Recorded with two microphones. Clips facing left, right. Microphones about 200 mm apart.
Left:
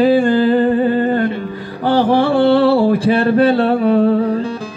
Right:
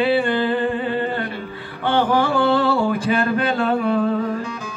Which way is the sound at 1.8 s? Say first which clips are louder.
Left 5 dB; 35° left (ahead or behind).